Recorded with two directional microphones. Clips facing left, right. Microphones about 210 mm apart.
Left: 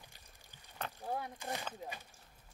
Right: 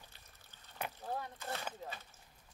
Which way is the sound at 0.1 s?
15° left (ahead or behind).